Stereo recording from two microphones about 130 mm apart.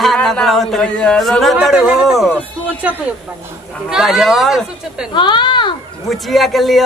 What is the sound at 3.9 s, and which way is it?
A man's voice, 5° right (ahead or behind).